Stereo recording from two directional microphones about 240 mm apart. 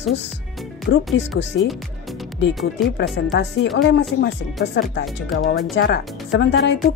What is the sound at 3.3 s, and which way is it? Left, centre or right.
Speech, left.